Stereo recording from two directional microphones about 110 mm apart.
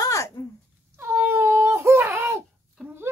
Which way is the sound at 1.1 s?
20° right (ahead or behind).